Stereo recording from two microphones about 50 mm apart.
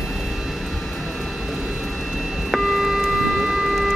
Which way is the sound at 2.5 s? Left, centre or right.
Centre.